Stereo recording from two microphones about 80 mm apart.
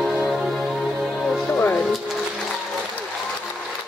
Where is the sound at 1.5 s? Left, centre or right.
Left.